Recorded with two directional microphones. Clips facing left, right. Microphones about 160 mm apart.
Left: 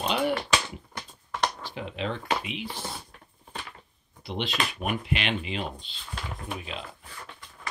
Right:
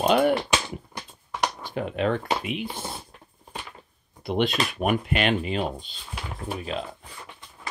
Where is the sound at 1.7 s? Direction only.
50° right (ahead or behind).